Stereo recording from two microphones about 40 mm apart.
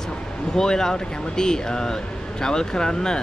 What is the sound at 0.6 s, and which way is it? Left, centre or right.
Speech, centre.